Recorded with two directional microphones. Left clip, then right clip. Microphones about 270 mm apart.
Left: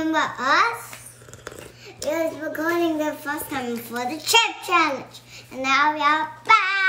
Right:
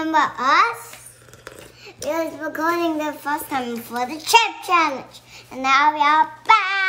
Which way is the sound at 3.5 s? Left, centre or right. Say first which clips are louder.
Right 3 dB; centre.